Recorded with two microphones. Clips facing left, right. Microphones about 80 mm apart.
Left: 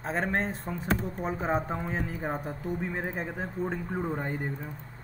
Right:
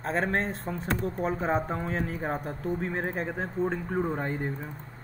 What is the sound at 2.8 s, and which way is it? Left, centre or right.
Speech, right.